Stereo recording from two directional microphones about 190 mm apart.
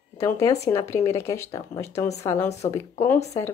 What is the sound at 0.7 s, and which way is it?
A woman's voice, 15° left (ahead or behind).